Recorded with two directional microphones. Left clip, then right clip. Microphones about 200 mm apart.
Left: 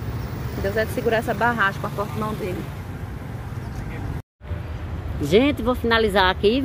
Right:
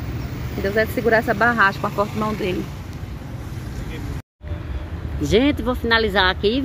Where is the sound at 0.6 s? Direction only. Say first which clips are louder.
Right 3 dB; 50° right (ahead or behind).